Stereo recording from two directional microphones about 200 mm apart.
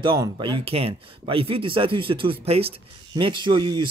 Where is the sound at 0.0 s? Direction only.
25° right (ahead or behind).